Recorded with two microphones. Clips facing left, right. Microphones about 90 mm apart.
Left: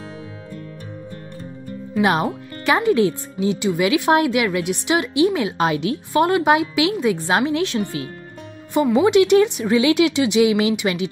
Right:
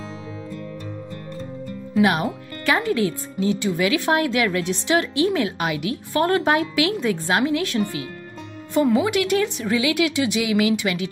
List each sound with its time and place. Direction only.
2.0 s speech: 25° left (ahead or behind)
5.6 s speech: 30° left (ahead or behind)
6.2 s speech: 15° left (ahead or behind)